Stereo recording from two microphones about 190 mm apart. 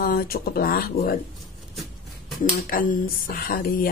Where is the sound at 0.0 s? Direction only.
50° left (ahead or behind).